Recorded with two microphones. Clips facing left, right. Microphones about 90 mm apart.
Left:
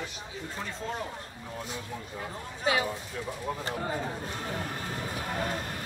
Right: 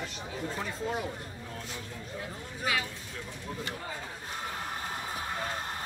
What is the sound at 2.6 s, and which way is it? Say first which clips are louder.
Speech: left 5 dB; 30° left (ahead or behind).